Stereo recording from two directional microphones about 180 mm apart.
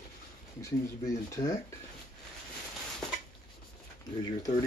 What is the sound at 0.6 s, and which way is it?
Speech, 15° left (ahead or behind).